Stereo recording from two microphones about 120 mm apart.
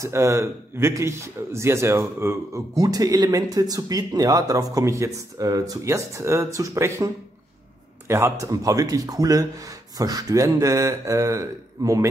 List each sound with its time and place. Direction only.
0.0 s a man's voice: 25° right (ahead or behind)
8.1 s a man's voice: 25° right (ahead or behind)